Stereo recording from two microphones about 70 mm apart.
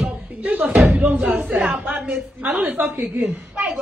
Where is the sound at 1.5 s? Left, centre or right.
Centre.